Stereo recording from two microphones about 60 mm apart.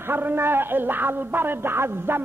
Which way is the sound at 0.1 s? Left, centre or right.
Right.